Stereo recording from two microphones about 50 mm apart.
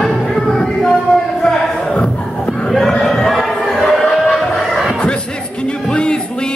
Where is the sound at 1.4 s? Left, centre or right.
Centre.